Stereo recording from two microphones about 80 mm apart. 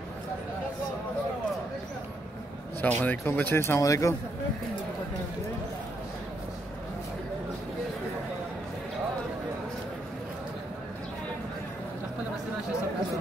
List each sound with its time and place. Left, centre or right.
2.8 s speech: left
3.8 s speech: left